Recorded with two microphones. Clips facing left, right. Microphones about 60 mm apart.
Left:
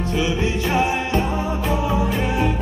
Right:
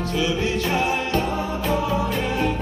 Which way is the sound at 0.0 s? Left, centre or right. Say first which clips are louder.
Left 1 dB; left.